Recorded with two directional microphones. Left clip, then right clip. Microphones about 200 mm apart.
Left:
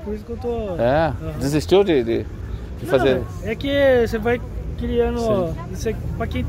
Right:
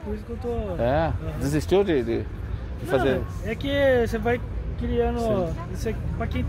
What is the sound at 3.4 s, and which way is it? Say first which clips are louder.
Speech: left 5 dB; 35° left (ahead or behind).